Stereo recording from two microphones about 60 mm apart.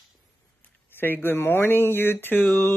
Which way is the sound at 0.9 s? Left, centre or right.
Left.